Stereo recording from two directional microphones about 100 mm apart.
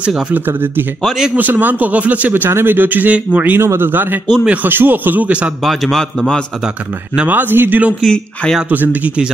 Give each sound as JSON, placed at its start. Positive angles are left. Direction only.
{"t": 0.0, "sound": "speech", "side_deg": -10}
{"t": 0.5, "sound": "a man's voice", "side_deg": -20}
{"t": 1.0, "sound": "a man's voice", "side_deg": -5}
{"t": 1.3, "sound": "a man's voice", "side_deg": -15}
{"t": 5.6, "sound": "a man's voice", "side_deg": 0}
{"t": 7.2, "sound": "speech", "side_deg": -15}
{"t": 8.0, "sound": "a man's voice", "side_deg": 5}
{"t": 8.5, "sound": "speech", "side_deg": -15}